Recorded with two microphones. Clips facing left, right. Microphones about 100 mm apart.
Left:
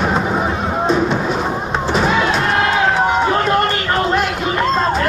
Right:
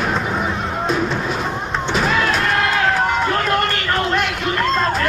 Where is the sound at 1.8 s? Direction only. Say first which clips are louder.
Left 3 dB; centre (ahead or behind).